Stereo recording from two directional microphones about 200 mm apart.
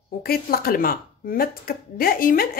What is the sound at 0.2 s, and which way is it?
Speech, 50° left (ahead or behind).